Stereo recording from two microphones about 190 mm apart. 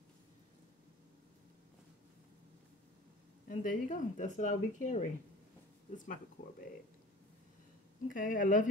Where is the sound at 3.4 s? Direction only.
45° left (ahead or behind).